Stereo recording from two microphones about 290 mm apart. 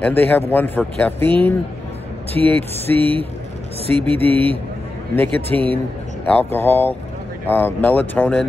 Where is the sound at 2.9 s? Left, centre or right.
Centre.